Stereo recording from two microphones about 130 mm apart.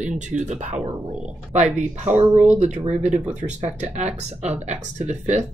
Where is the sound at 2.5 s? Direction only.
60° right (ahead or behind).